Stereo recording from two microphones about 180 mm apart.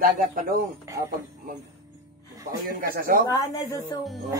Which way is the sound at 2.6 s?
50° right (ahead or behind).